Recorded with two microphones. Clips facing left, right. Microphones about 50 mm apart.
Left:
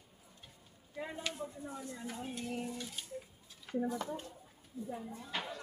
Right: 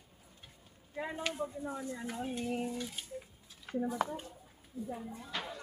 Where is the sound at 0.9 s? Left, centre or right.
Right.